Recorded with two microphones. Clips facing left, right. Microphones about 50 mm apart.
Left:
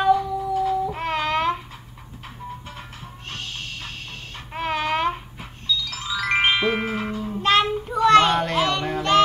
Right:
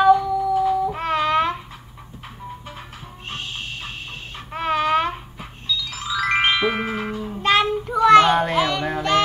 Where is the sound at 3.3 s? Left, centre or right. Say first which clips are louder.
Right 3 dB; right.